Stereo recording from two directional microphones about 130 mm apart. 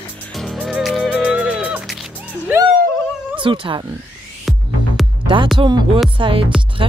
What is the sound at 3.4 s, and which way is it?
Speech, 40° right (ahead or behind).